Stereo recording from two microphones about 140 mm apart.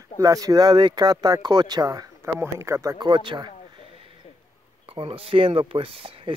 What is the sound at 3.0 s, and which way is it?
Speech, 35° right (ahead or behind).